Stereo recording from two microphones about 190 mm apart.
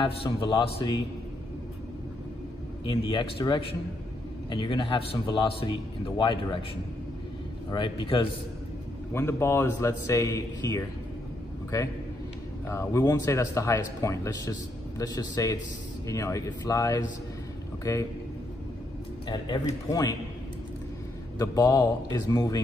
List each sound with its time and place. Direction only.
0.0 s a man's voice: 25° left (ahead or behind)
2.8 s a man's voice: 25° left (ahead or behind)
7.7 s a man's voice: 25° left (ahead or behind)
9.1 s speech: 15° left (ahead or behind)
12.6 s a man's voice: 15° left (ahead or behind)
19.2 s a man's voice: 25° left (ahead or behind)
21.4 s a man's voice: 20° left (ahead or behind)